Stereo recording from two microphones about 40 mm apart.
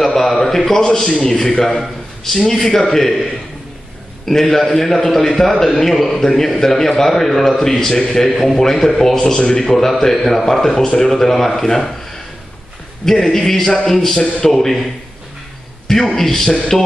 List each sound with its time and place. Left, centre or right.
0.0 s a man's voice: centre
4.3 s a man's voice: centre
8.3 s a man's voice: centre
13.0 s a man's voice: centre
15.9 s a man's voice: centre
16.7 s music: centre